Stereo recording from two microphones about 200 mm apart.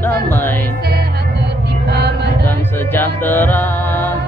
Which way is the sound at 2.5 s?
10° left (ahead or behind).